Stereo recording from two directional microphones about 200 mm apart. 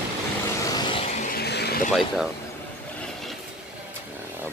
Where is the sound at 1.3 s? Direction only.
55° left (ahead or behind).